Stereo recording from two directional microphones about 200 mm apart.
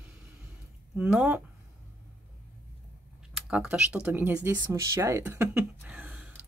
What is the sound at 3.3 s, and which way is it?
Speech, 5° right (ahead or behind).